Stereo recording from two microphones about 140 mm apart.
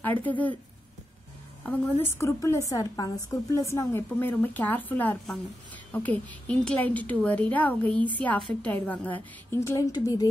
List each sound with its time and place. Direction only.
0.2 s a woman's voice: 10° left (ahead or behind)
1.6 s a woman's voice: 15° left (ahead or behind)
9.9 s speech: 30° left (ahead or behind)